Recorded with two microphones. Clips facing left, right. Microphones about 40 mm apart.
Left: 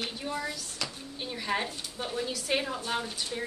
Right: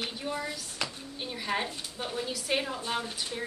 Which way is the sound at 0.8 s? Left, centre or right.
Right.